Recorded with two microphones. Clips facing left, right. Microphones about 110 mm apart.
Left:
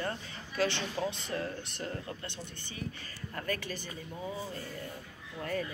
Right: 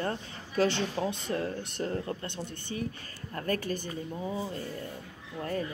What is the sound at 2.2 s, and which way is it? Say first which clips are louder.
Speech: right 6 dB; 50° right (ahead or behind).